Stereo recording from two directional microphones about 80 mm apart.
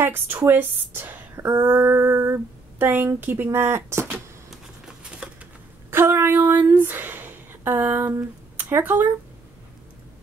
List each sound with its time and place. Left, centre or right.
0.0 s speech: right
4.5 s a sound: centre
5.9 s speech: right
8.1 s speech: right